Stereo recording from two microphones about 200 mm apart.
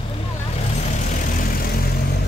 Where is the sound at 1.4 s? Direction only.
45° left (ahead or behind).